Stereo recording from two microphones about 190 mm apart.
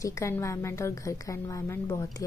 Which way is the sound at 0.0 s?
15° left (ahead or behind).